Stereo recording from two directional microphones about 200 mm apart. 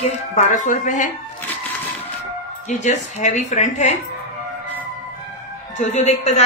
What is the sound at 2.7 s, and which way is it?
A woman's voice, 35° left (ahead or behind).